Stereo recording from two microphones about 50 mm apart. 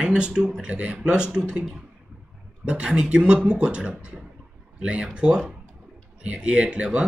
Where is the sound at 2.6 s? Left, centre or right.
Centre.